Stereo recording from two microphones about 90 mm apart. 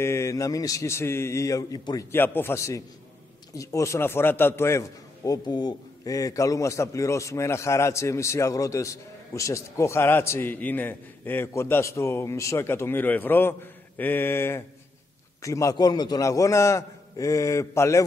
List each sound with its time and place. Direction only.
0.0 s a man's voice: 30° left (ahead or behind)
2.1 s a man's voice: 25° left (ahead or behind)
15.4 s a man's voice: 35° left (ahead or behind)